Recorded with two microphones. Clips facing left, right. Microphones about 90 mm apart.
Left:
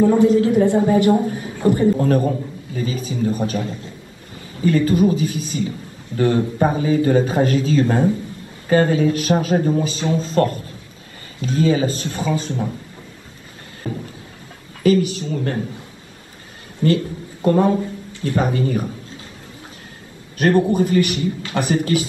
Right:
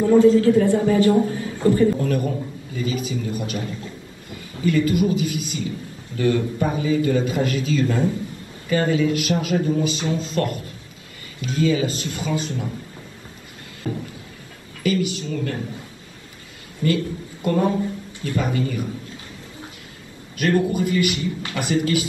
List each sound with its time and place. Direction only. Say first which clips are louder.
0.0 s a man's voice: even; 20° left (ahead or behind)
2.0 s a man's voice: left 5 dB; 40° left (ahead or behind)
13.9 s a sound: even; 20° left (ahead or behind)
14.8 s speech: left 6 dB; 35° left (ahead or behind)
16.8 s a woman's voice: left 4 dB; 50° left (ahead or behind)
18.3 s speech: left 4 dB; 40° left (ahead or behind)
20.3 s speech: left 4 dB; 35° left (ahead or behind)